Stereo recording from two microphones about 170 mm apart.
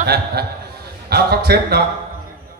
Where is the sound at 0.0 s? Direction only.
70° right (ahead or behind).